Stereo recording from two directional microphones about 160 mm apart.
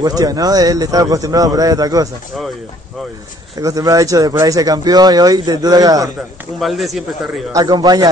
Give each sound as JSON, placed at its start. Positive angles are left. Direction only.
{"t": 0.0, "sound": "speech", "side_deg": -25}
{"t": 3.5, "sound": "speech", "side_deg": -20}
{"t": 6.6, "sound": "a man's voice", "side_deg": 0}
{"t": 7.5, "sound": "speech", "side_deg": -25}